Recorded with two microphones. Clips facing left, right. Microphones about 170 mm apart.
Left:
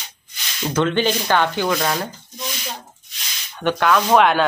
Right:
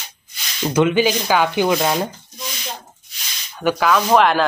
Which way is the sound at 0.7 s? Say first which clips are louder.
Right 3 dB; 10° right (ahead or behind).